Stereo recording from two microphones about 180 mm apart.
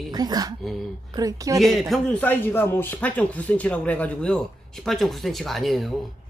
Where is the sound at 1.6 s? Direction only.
Centre (ahead or behind).